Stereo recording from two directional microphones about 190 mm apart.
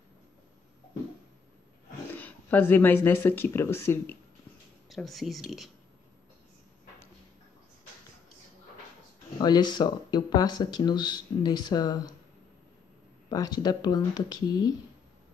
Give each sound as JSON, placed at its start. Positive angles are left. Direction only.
{"t": 2.1, "sound": "speech", "side_deg": 10}
{"t": 4.8, "sound": "speech", "side_deg": 0}
{"t": 9.4, "sound": "speech", "side_deg": 20}
{"t": 13.3, "sound": "speech", "side_deg": 20}